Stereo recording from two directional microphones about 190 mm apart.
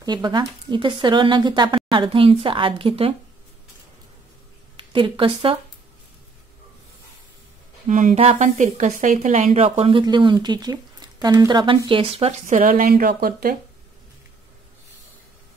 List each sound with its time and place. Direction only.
0.0 s speech: 25° right (ahead or behind)
4.9 s speech: 25° right (ahead or behind)
7.9 s speech: 40° right (ahead or behind)